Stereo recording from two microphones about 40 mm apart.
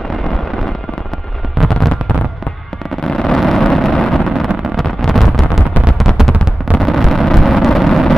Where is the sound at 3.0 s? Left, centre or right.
Centre.